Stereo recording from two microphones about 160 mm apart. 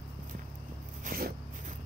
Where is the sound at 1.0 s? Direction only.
65° right (ahead or behind).